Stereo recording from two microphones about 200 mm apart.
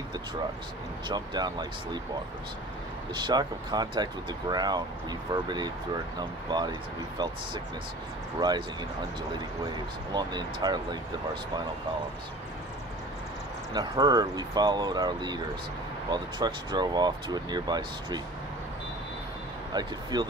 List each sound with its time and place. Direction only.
1.0 s speech: 20° right (ahead or behind)
3.2 s speech: 20° right (ahead or behind)
8.4 s speech: 20° right (ahead or behind)
10.1 s speech: 20° right (ahead or behind)
13.7 s speech: 20° right (ahead or behind)
19.7 s speech: 20° right (ahead or behind)